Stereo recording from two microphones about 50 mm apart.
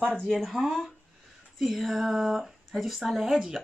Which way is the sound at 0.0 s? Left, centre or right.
Centre.